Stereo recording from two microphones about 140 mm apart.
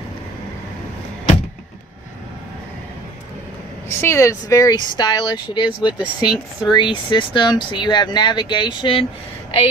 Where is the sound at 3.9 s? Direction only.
20° left (ahead or behind).